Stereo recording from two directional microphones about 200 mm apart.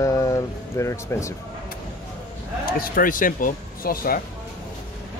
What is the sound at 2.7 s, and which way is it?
Speech, 45° left (ahead or behind).